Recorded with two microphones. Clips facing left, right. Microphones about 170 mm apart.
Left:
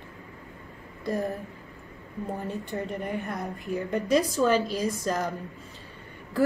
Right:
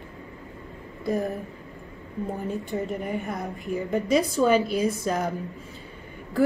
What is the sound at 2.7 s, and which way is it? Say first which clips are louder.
A woman's voice: right 2 dB; centre (ahead or behind).